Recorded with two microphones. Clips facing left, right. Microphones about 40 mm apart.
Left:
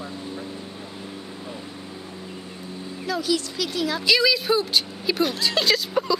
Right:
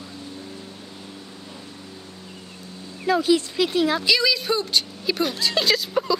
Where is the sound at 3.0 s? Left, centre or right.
Right.